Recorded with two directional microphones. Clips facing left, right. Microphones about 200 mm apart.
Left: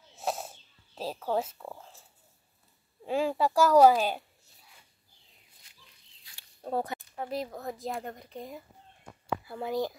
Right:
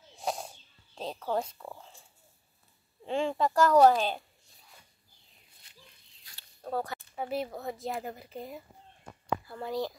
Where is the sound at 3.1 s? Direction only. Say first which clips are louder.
Left 1 dB; 5° left (ahead or behind).